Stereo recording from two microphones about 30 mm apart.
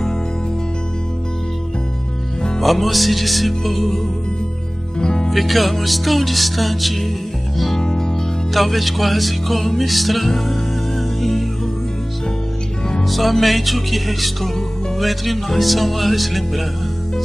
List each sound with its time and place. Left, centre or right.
2.6 s music: centre
4.9 s music: left
5.3 s music: centre
7.8 s music: left
8.5 s music: centre
13.0 s music: centre